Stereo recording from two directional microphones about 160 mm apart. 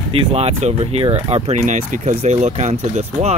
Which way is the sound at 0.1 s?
40° right (ahead or behind).